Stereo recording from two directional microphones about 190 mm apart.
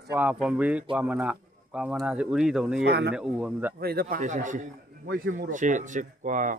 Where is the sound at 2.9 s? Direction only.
60° right (ahead or behind).